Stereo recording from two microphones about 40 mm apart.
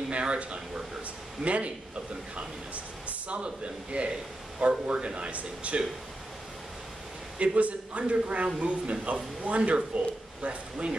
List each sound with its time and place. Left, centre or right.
0.1 s speech: right
7.3 s speech: right